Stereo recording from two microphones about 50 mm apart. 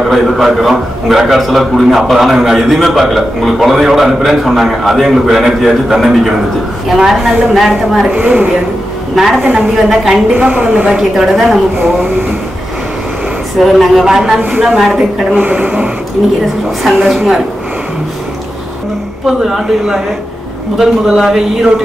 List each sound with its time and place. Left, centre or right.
0.1 s a man's voice: centre
8.1 s a woman's voice: right
9.1 s a woman's voice: centre
10.3 s a woman's voice: right
10.9 s a man's voice: centre
13.6 s a man's voice: centre
15.3 s a woman's voice: right
16.8 s a man's voice: centre
19.2 s a man's voice: centre